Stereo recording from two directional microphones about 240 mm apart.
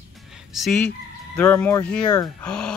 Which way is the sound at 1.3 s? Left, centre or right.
Centre.